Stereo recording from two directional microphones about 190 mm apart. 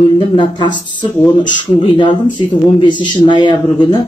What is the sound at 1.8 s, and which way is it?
Speech, 25° left (ahead or behind).